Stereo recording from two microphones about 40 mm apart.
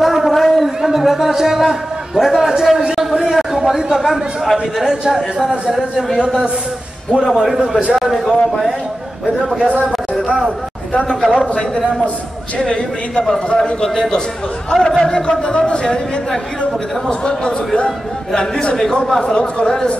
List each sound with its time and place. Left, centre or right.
0.0 s a sound: centre
3.0 s a man's voice: centre
7.3 s a man's voice: centre
9.7 s a man's voice: right
11.1 s a man's voice: centre
11.3 s speech: left
13.8 s a man's voice: centre
15.2 s a man's voice: left
19.2 s speech: left